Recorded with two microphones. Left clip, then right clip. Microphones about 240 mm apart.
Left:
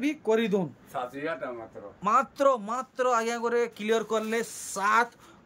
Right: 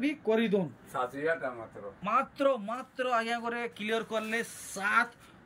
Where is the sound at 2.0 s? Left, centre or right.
Centre.